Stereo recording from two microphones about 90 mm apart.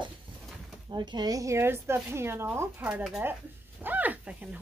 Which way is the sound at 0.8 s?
60° right (ahead or behind).